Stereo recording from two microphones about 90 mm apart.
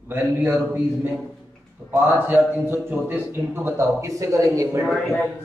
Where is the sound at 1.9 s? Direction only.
25° right (ahead or behind).